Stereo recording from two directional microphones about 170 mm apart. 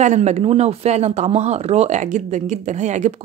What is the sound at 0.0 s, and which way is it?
Speech, 45° right (ahead or behind).